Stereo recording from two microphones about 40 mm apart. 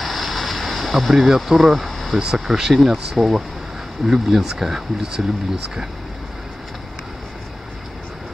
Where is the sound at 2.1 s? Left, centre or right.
Centre.